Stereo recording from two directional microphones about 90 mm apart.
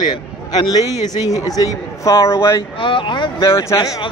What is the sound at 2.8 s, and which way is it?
Speech, 70° left (ahead or behind).